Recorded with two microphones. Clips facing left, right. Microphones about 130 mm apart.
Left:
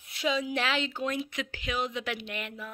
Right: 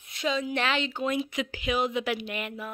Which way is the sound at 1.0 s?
15° right (ahead or behind).